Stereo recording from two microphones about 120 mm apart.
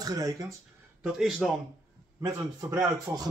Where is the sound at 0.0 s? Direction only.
30° right (ahead or behind).